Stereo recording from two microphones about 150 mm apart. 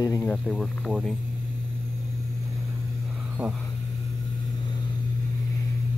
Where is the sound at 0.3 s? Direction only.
5° left (ahead or behind).